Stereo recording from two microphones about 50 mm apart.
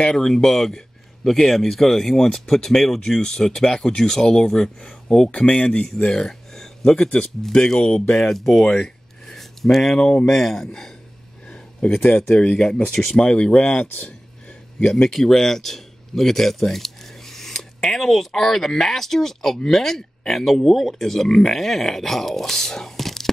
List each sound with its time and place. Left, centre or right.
0.0 s speech: centre
8.6 s a sound: centre
10.2 s speech: centre
11.8 s speech: left
14.9 s speech: centre